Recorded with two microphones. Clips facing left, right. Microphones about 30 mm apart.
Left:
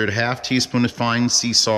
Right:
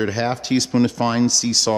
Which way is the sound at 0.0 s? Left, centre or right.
Centre.